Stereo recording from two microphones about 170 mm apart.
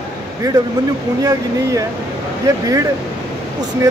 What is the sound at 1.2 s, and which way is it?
Speech, 20° right (ahead or behind).